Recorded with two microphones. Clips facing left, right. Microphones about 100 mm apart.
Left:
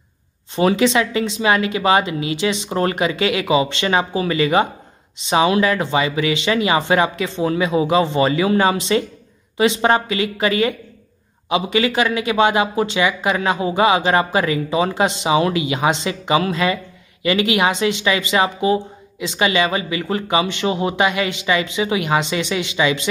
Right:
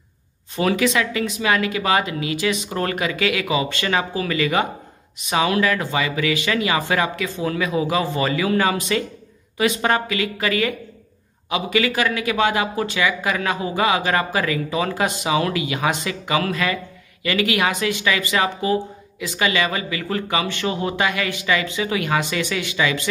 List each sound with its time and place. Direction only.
0.6 s speech: 25° left (ahead or behind)